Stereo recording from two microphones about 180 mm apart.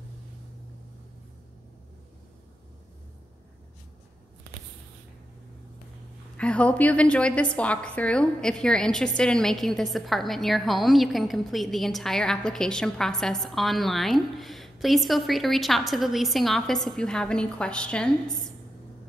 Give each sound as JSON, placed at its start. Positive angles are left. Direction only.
{"t": 6.3, "sound": "a woman's voice", "side_deg": 5}